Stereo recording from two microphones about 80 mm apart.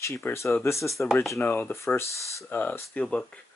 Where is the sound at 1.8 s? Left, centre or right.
Left; by 3.2 s centre.